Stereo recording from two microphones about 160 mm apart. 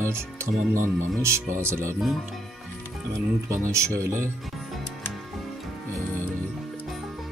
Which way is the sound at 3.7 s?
20° right (ahead or behind).